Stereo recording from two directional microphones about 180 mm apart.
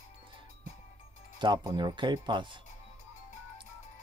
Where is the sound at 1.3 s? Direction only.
25° right (ahead or behind).